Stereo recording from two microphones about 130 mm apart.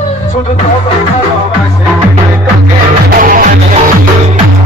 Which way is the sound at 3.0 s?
90° right.